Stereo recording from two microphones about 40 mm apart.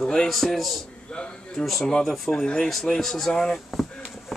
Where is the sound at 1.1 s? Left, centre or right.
Left.